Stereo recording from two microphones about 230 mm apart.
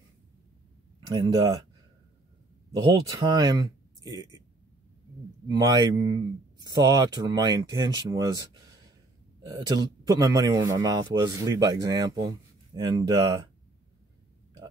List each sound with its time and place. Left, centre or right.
1.0 s speech: right
2.7 s speech: centre
5.5 s speech: centre
9.6 s speech: centre